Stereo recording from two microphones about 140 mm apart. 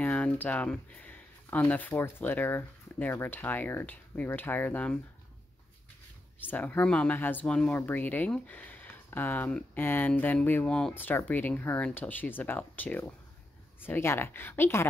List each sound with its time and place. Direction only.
0.0 s speech: 10° left (ahead or behind)
6.4 s speech: 15° left (ahead or behind)